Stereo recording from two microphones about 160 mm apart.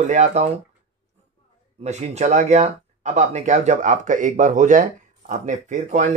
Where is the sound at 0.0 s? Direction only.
45° right (ahead or behind).